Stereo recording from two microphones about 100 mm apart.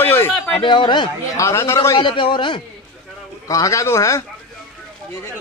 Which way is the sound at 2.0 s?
55° left (ahead or behind).